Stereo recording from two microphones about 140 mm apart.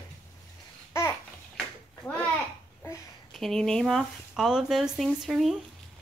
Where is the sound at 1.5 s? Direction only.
10° left (ahead or behind).